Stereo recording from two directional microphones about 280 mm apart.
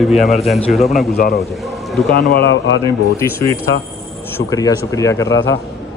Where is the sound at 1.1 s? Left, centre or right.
Left.